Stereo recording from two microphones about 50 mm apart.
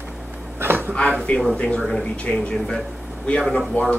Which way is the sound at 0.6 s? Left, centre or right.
Right.